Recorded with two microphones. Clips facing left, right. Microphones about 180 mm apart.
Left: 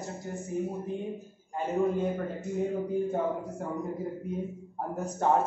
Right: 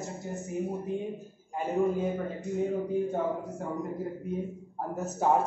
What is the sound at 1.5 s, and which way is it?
A man's voice, 10° right (ahead or behind).